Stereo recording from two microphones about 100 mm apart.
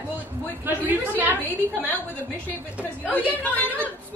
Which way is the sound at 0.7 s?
15° right (ahead or behind).